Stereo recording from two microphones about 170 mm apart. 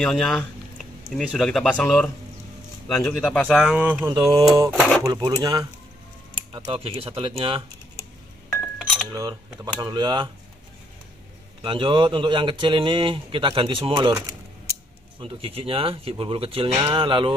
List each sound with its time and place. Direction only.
0.0 s speech: 5° left (ahead or behind)
4.1 s speech: 25° right (ahead or behind)
4.7 s speech: centre (ahead or behind)
5.1 s speech: 25° right (ahead or behind)
8.7 s cutlery: centre (ahead or behind)
9.1 s speech: 20° right (ahead or behind)
11.6 s speech: 30° right (ahead or behind)